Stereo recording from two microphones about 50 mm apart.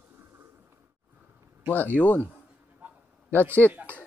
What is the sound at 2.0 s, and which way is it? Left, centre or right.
Speech, left.